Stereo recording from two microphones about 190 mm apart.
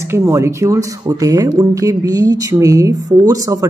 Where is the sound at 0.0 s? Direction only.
15° right (ahead or behind).